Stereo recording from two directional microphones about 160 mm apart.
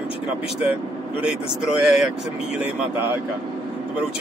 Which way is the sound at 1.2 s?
5° right (ahead or behind).